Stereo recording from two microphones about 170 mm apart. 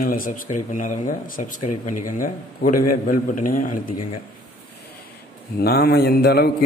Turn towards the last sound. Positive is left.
turn(degrees=70)  # may be behind; listen again after turning